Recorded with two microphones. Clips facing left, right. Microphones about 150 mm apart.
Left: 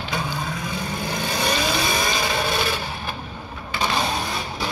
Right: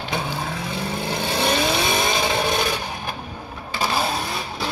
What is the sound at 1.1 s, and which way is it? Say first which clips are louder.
Vehicle: right 2 dB; 25° right (ahead or behind).